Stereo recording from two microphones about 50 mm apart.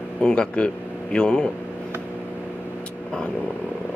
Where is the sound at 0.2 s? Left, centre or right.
Left.